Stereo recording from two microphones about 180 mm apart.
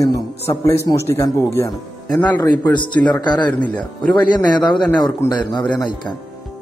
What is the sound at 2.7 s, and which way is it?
Speech, 25° left (ahead or behind).